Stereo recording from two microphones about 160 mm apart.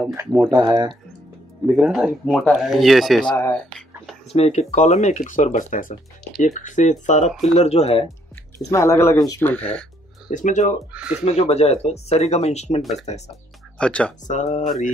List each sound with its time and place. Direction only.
0.6 s speech: 20° right (ahead or behind)
1.7 s speech: centre (ahead or behind)
3.3 s speech: 15° left (ahead or behind)
4.3 s speech: 40° left (ahead or behind)
8.7 s speech: 15° left (ahead or behind)
9.4 s speech: 10° left (ahead or behind)
10.3 s speech: 50° left (ahead or behind)
10.9 s speech: 5° right (ahead or behind)
11.2 s speech: 40° left (ahead or behind)
13.7 s speech: 5° left (ahead or behind)
14.2 s speech: 50° left (ahead or behind)